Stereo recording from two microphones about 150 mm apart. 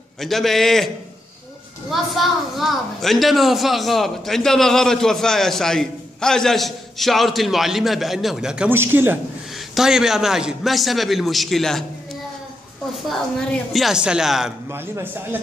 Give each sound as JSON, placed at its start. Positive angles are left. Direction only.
{"t": 0.2, "sound": "a woman's voice", "side_deg": 0}
{"t": 1.9, "sound": "a woman's voice", "side_deg": 0}
{"t": 9.8, "sound": "a woman's voice", "side_deg": -5}
{"t": 13.7, "sound": "a woman's voice", "side_deg": -5}
{"t": 14.7, "sound": "a man's voice", "side_deg": -20}